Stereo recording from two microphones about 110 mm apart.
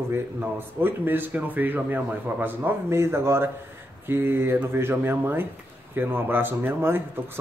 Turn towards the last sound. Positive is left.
turn(degrees=-20)  # may be behind; listen again after turning